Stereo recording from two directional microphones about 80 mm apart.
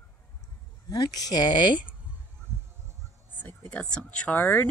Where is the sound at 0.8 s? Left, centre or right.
Left.